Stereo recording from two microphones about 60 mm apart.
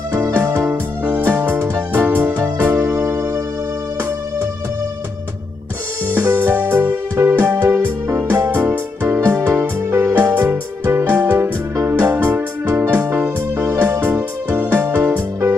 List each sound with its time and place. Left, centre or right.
0.1 s music: right
2.4 s music: right
6.1 s music: right
7.6 s music: right